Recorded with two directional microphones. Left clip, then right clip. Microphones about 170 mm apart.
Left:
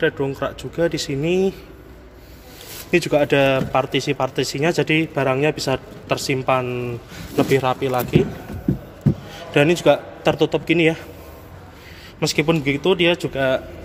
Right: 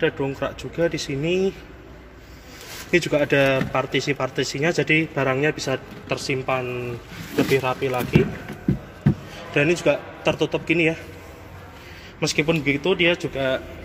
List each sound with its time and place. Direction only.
0.0 s speech: 5° left (ahead or behind)
2.9 s a man's voice: 10° left (ahead or behind); by 8.3 s 25° left (ahead or behind)
9.5 s a man's voice: 25° left (ahead or behind)
12.2 s speech: 15° left (ahead or behind)